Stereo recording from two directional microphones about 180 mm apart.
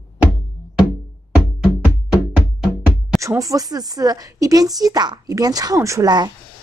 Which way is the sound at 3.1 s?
15° right (ahead or behind).